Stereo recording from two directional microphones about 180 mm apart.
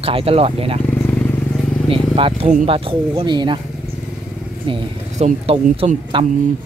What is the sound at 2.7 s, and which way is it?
Speech, 30° right (ahead or behind).